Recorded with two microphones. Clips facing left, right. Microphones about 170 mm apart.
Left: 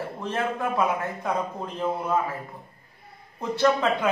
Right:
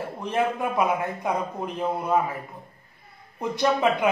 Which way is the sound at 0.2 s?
15° right (ahead or behind).